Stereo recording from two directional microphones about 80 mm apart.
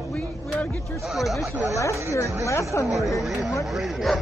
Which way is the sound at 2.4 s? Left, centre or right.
Left.